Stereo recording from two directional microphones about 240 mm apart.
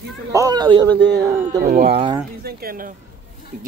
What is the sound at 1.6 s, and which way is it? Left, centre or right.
A man's voice, right.